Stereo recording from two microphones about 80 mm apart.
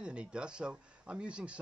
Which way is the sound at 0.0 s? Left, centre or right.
Centre.